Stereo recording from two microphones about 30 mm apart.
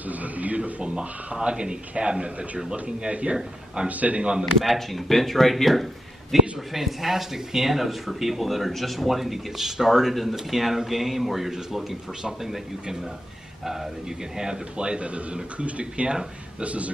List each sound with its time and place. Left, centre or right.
0.0 s a sound: right
0.6 s speech: right
3.9 s speech: right
4.2 s speech: right
4.6 s speech: centre
6.3 s a sound: centre
6.7 s speech: centre
13.7 s a man's voice: centre; by 16.2 s right
16.6 s speech: right